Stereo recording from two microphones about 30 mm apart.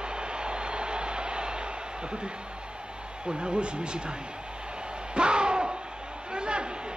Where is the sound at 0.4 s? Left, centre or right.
Right.